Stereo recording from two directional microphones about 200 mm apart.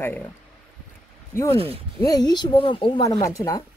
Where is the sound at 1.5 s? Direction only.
30° right (ahead or behind).